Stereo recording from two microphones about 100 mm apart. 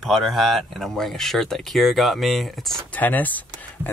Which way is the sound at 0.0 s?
Centre (ahead or behind).